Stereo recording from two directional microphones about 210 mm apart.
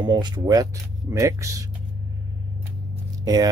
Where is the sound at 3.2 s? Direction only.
15° right (ahead or behind).